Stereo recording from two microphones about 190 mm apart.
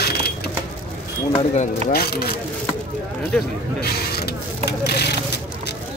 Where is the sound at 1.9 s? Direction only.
55° left (ahead or behind).